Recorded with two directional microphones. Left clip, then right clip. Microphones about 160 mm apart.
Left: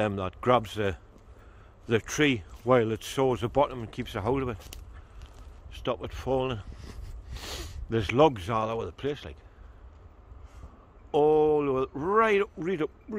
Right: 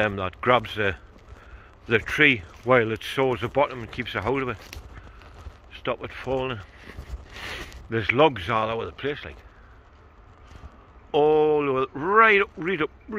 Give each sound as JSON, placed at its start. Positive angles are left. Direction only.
{"t": 0.0, "sound": "a man's voice", "side_deg": 25}
{"t": 5.7, "sound": "speech", "side_deg": 40}
{"t": 7.9, "sound": "speech", "side_deg": 35}
{"t": 11.1, "sound": "a man's voice", "side_deg": 15}